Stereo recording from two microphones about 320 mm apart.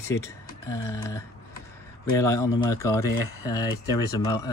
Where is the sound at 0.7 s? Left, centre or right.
Centre.